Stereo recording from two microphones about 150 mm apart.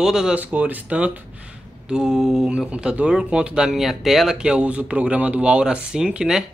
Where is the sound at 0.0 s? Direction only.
5° right (ahead or behind).